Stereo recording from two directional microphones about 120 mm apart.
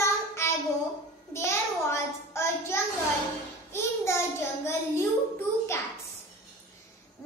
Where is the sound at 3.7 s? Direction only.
20° left (ahead or behind).